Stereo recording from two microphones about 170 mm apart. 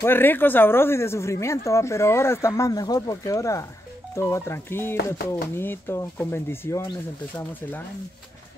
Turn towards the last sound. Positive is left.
turn(degrees=10)  # may be behind; listen again after turning